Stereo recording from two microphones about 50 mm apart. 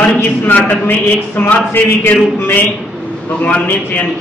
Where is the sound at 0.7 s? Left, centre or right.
Left.